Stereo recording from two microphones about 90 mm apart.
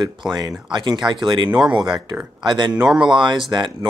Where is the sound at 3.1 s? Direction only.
60° right (ahead or behind).